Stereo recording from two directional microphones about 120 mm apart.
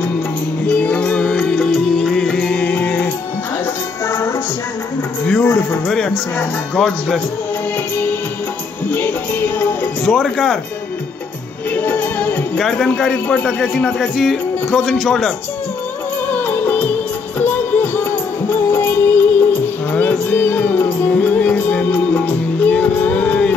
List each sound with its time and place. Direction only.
0.7 s music: 10° left (ahead or behind)
5.2 s a sound: 10° left (ahead or behind)
5.9 s speech: 5° left (ahead or behind)
8.9 s music: 15° left (ahead or behind)
11.7 s music: 15° left (ahead or behind)
12.6 s a man's voice: 5° left (ahead or behind)
16.3 s music: 15° left (ahead or behind)